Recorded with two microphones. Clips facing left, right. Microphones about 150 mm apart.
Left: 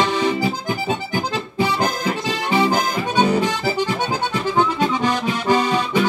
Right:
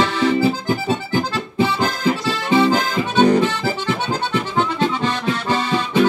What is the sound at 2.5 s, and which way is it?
Accordion, 15° left (ahead or behind).